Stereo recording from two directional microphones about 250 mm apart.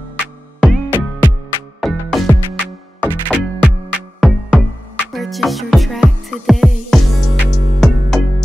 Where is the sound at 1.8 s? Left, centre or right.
Centre.